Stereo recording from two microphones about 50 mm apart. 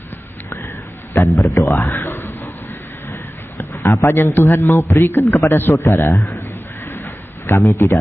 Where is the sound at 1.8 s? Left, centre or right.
Left.